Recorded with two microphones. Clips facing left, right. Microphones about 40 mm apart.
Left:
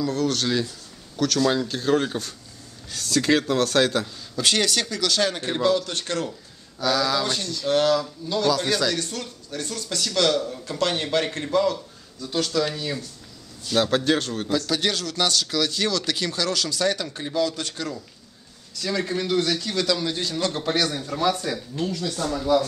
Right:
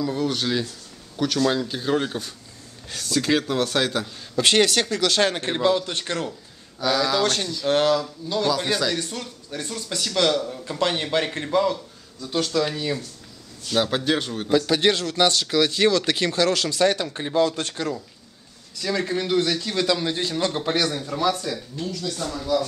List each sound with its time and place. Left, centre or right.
0.0 s a man's voice: centre
4.4 s speech: right
5.5 s speech: right
6.8 s a man's voice: centre
7.6 s speech: right
7.9 s a man's voice: centre
14.5 s speech: right
18.8 s a man's voice: centre
20.6 s speech: centre
21.5 s speech: centre